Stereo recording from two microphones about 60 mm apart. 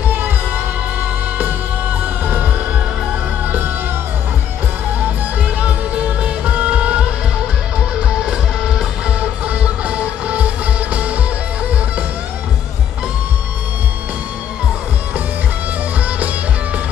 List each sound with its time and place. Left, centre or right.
3.4 s music: right
5.0 s music: right
8.3 s music: centre